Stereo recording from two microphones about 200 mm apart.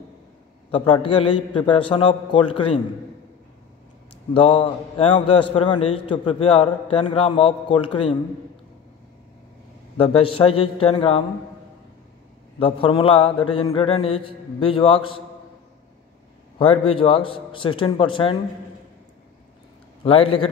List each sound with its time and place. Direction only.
0.7 s a man's voice: 25° left (ahead or behind)
4.3 s a man's voice: 25° left (ahead or behind)
9.9 s a man's voice: 25° left (ahead or behind)
12.5 s a man's voice: 30° left (ahead or behind)
16.5 s a man's voice: 25° left (ahead or behind)
20.0 s a man's voice: 30° left (ahead or behind)